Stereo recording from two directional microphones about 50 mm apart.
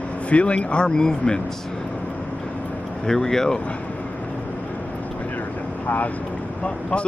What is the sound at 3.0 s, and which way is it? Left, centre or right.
Speech, centre.